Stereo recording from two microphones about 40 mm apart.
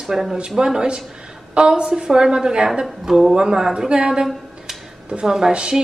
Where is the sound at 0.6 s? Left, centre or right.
Centre.